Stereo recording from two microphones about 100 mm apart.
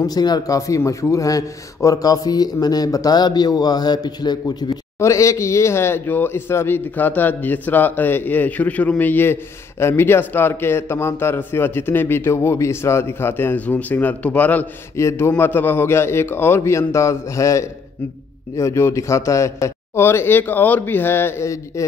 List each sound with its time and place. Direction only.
0.0 s a man's voice: 40° left (ahead or behind)
4.9 s a man's voice: 30° left (ahead or behind)